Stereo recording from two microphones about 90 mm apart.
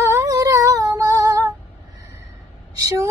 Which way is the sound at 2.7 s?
35° right (ahead or behind).